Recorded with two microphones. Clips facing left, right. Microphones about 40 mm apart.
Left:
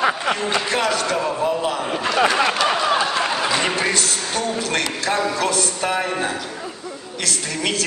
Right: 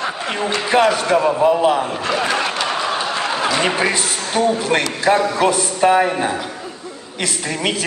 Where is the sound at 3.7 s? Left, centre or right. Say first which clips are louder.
Right 2 dB; centre.